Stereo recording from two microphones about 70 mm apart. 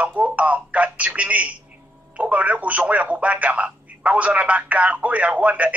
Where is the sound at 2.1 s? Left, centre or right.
Centre.